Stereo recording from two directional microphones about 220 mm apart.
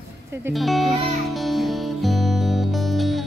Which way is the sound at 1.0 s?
Centre (ahead or behind).